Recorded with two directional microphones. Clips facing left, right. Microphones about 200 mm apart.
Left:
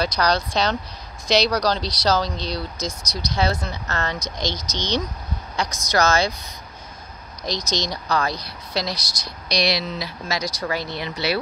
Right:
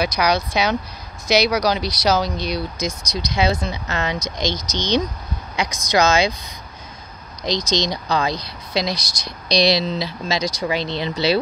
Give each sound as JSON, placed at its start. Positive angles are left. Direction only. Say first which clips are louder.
{"t": 0.0, "sound": "speech", "louder": "right 2 dB", "side_deg": -10}
{"t": 4.5, "sound": "speech", "louder": "right 4 dB", "side_deg": 10}
{"t": 5.6, "sound": "speech", "louder": "right 3 dB", "side_deg": -15}
{"t": 7.9, "sound": "speech", "louder": "right 2 dB", "side_deg": -20}
{"t": 9.6, "sound": "speech", "louder": "right 5 dB", "side_deg": -25}